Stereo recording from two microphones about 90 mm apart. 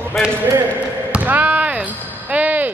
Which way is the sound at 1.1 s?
15° right (ahead or behind).